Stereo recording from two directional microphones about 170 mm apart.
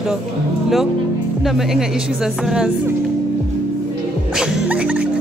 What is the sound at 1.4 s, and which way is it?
Speech, centre (ahead or behind).